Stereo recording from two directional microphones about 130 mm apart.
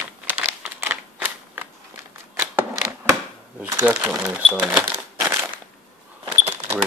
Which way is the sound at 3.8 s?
10° right (ahead or behind).